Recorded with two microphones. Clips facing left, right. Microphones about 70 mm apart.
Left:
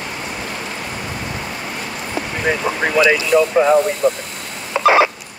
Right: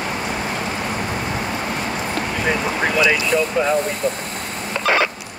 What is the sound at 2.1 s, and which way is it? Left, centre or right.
Vehicle, centre.